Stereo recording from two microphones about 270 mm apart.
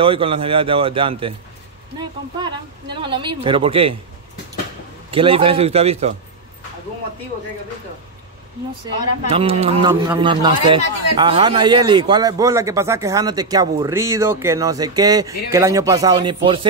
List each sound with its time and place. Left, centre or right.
0.0 s a man's voice: centre
5.1 s a man's voice: centre
9.3 s speech: right